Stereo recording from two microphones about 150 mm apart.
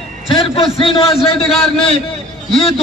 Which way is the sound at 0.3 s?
35° left (ahead or behind).